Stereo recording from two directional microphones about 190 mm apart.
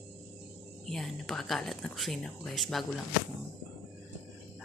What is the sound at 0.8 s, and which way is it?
A woman's voice, centre (ahead or behind).